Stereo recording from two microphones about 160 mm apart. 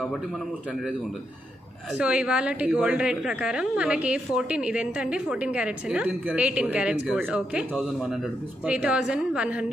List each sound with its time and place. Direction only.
2.0 s a woman's voice: 5° right (ahead or behind)